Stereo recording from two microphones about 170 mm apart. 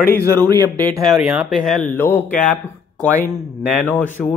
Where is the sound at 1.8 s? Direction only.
10° left (ahead or behind).